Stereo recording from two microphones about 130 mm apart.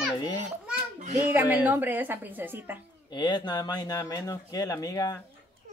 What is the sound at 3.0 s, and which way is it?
Speech, 35° left (ahead or behind).